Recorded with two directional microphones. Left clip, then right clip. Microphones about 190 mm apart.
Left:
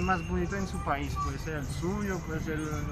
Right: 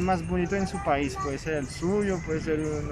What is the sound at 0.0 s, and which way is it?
Speech, 25° right (ahead or behind).